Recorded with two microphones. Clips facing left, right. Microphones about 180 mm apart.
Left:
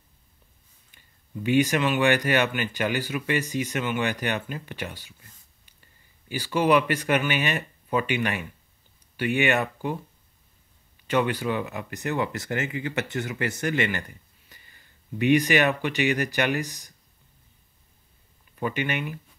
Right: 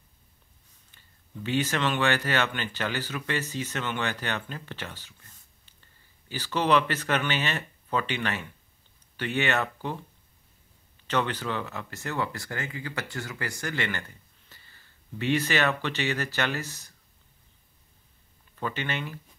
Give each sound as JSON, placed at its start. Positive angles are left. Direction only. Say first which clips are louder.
{"t": 0.9, "sound": "speech", "louder": "left 5 dB", "side_deg": 15}
{"t": 6.2, "sound": "speech", "louder": "left 4 dB", "side_deg": 10}
{"t": 11.1, "sound": "speech", "louder": "left 4 dB", "side_deg": 10}
{"t": 18.6, "sound": "speech", "louder": "left 4 dB", "side_deg": 15}